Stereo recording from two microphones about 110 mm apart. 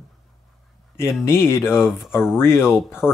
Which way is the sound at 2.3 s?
20° left (ahead or behind).